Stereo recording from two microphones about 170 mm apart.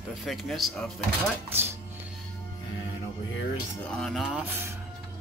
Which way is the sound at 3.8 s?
5° left (ahead or behind).